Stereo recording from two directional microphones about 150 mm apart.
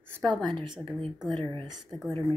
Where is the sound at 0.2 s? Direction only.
30° right (ahead or behind).